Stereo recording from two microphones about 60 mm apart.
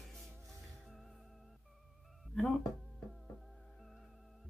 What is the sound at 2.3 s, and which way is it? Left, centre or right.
Speech, centre.